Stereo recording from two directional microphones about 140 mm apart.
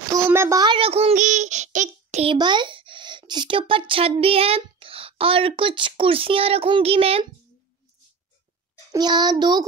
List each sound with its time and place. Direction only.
0.1 s a sound: 20° right (ahead or behind)
0.7 s child singing: 45° right (ahead or behind)
1.1 s child singing: 60° right (ahead or behind)
2.2 s speech: 35° right (ahead or behind)
8.9 s a child's voice: 30° right (ahead or behind)